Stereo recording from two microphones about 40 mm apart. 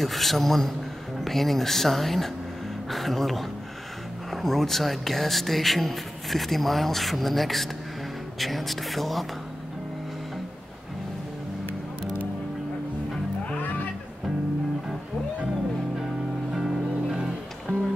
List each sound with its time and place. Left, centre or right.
0.0 s speech: centre
13.6 s music: left
16.5 s music: centre
17.7 s music: left